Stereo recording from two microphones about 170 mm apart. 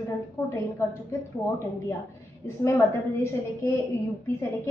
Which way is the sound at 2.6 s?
15° left (ahead or behind).